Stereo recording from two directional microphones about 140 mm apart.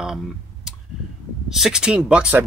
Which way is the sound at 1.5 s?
5° right (ahead or behind).